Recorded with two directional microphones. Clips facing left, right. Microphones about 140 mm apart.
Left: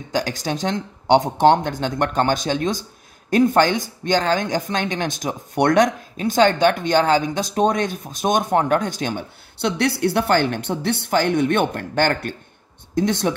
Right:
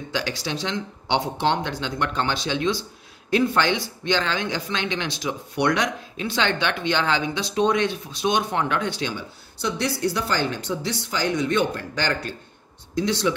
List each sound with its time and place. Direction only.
0.1 s speech: 45° left (ahead or behind)